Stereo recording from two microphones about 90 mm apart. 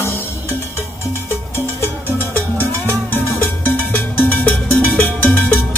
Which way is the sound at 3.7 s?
20° left (ahead or behind).